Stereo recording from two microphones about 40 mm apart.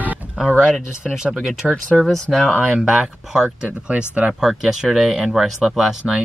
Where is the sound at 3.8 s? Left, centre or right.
Right.